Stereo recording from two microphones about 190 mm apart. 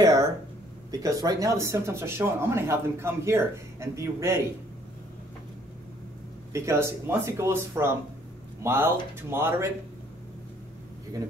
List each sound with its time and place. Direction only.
0.0 s a sound: 20° right (ahead or behind)
0.9 s speech: 20° right (ahead or behind)
6.5 s speech: 15° right (ahead or behind)